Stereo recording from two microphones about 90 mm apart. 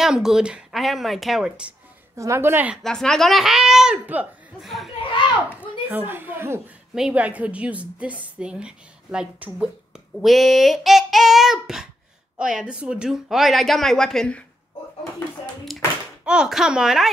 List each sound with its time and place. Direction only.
0.0 s speech: 5° right (ahead or behind)
2.1 s a woman's voice: 35° right (ahead or behind)
2.8 s speech: 5° left (ahead or behind)
5.9 s a woman's voice: 20° right (ahead or behind)
7.0 s a woman's voice: 15° right (ahead or behind); by 14.4 s 10° left (ahead or behind)
15.7 s a child's voice: centre (ahead or behind)